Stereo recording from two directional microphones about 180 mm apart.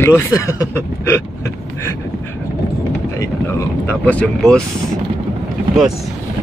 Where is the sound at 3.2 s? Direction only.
15° left (ahead or behind).